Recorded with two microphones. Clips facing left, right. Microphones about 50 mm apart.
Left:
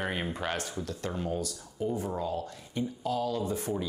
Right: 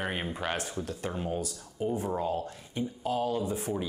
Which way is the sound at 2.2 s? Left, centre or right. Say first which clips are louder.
Right 2 dB; right.